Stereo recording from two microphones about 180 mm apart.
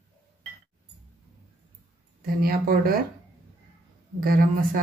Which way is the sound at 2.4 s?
55° right (ahead or behind).